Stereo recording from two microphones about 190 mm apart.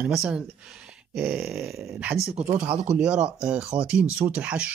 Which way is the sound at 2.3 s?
35° right (ahead or behind).